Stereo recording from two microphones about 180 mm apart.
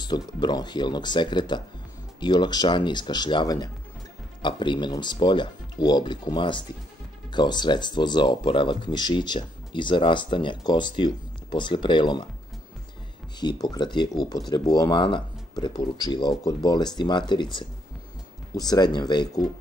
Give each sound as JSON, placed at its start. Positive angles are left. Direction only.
{"t": 0.0, "sound": "speech", "side_deg": 25}
{"t": 13.4, "sound": "speech", "side_deg": 20}